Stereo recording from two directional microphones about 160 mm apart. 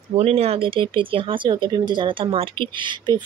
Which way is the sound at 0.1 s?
40° right (ahead or behind).